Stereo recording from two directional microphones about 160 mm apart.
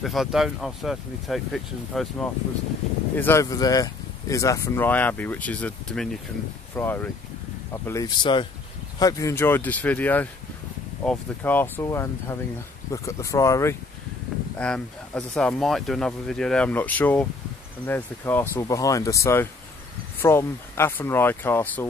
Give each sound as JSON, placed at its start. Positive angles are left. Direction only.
{"t": 0.0, "sound": "speech", "side_deg": 0}
{"t": 3.2, "sound": "speech", "side_deg": 15}
{"t": 9.0, "sound": "speech", "side_deg": 15}
{"t": 14.6, "sound": "speech", "side_deg": 5}